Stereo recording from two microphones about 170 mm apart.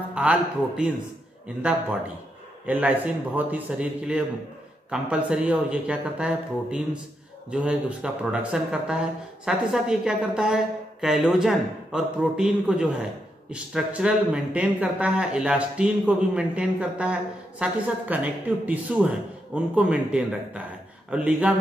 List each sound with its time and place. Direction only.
0.1 s speech: 5° right (ahead or behind)